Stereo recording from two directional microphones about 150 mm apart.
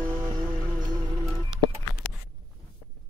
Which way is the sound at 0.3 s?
30° right (ahead or behind).